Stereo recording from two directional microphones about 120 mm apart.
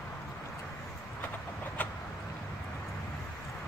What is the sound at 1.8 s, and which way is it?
Vehicle, 15° left (ahead or behind).